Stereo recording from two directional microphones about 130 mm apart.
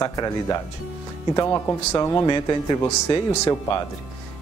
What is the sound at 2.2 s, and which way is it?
Speech, 35° left (ahead or behind).